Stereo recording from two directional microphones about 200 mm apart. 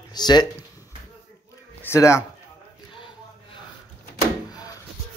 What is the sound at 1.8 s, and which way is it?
Speech, 15° left (ahead or behind).